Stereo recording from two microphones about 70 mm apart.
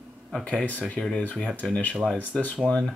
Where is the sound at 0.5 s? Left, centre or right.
Centre.